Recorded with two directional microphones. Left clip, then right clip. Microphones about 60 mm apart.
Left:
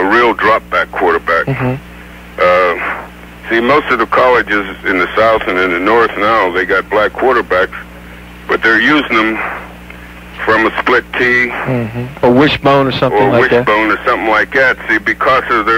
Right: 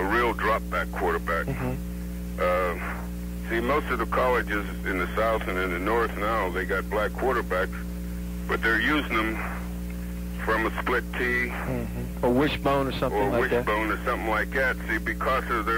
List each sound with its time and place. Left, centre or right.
0.0 s speech: left